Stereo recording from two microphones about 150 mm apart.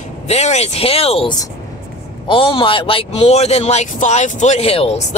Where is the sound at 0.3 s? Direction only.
45° left (ahead or behind).